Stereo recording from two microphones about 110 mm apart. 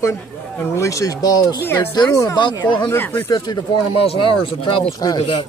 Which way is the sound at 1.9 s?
35° left (ahead or behind).